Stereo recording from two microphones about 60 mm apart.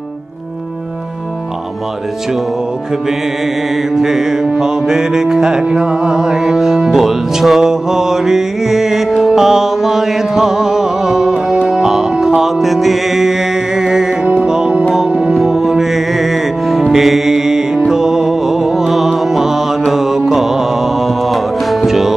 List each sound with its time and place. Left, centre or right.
3.9 s music: centre
15.3 s music: centre